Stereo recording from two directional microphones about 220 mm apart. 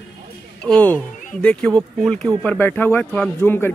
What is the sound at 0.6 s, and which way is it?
Speech, 5° left (ahead or behind).